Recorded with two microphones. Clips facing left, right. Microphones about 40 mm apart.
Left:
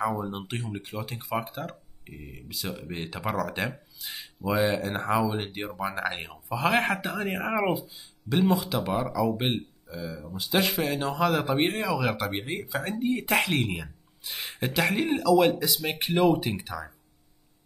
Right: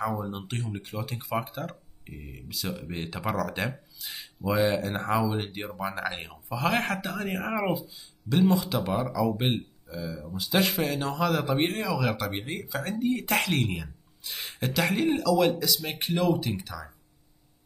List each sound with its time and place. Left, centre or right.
0.0 s speech: centre
15.8 s speech: centre
16.1 s speech: left